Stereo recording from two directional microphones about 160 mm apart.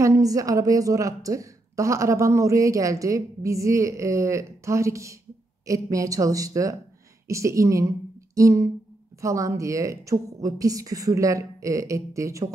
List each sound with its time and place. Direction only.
0.0 s a woman's voice: 20° right (ahead or behind)